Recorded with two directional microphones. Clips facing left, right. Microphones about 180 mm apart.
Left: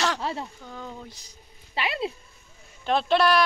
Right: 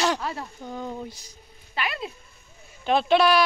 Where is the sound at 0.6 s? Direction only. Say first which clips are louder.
Right 6 dB; 15° right (ahead or behind).